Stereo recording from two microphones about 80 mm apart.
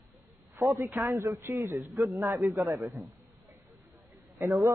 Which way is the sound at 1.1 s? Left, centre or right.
Right.